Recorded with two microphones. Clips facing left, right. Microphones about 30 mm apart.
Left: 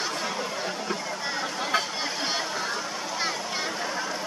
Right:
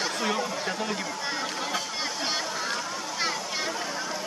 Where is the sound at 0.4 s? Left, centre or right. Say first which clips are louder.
Right 1 dB; centre.